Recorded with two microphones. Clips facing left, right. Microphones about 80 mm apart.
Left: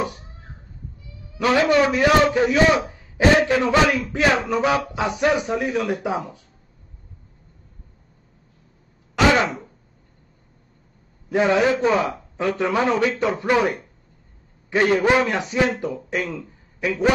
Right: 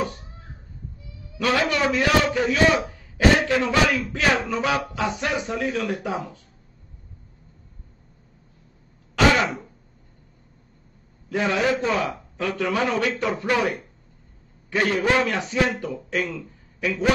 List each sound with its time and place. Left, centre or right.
1.4 s a man's voice: left
9.1 s throat clearing: centre
11.2 s a man's voice: left